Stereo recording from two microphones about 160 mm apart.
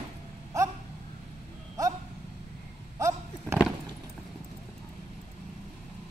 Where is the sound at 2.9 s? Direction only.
20° right (ahead or behind).